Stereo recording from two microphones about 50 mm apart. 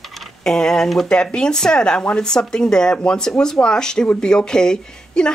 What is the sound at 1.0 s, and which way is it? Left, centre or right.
Speech, centre.